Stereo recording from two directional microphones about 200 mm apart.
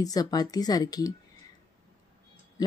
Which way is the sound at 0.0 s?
20° left (ahead or behind).